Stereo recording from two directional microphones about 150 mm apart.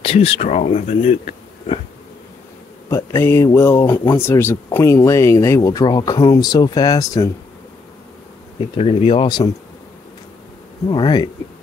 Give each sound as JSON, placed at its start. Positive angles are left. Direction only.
{"t": 0.0, "sound": "speech", "side_deg": 40}
{"t": 2.9, "sound": "speech", "side_deg": 20}
{"t": 8.7, "sound": "speech", "side_deg": 40}
{"t": 10.9, "sound": "speech", "side_deg": 30}